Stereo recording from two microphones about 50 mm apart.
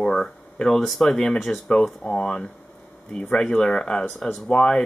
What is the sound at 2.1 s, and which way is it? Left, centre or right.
Speech, centre.